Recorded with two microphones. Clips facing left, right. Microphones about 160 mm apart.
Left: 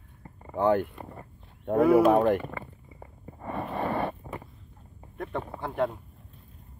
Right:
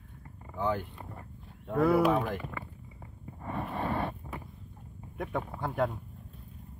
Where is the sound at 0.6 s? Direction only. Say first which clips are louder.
Left 8 dB; 60° left (ahead or behind).